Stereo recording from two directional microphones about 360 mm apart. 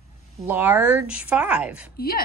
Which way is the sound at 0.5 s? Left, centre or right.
Centre.